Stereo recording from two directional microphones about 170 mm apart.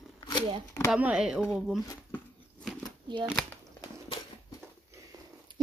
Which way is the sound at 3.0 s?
25° right (ahead or behind).